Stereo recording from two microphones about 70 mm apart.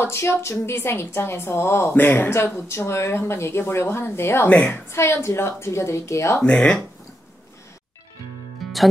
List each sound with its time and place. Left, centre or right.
0.0 s a woman's voice: left
4.5 s a woman's voice: left
4.9 s a woman's voice: left
6.4 s speech: centre
8.6 s music: centre